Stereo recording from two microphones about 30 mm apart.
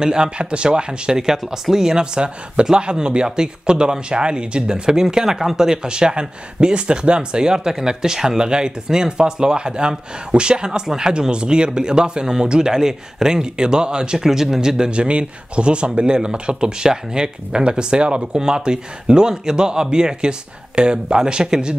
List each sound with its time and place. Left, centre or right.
0.0 s speech: right
0.4 s speech: right
1.1 s speech: centre
2.1 s speech: right; by 5.8 s centre
5.8 s speech: right
14.2 s speech: centre
14.9 s speech: right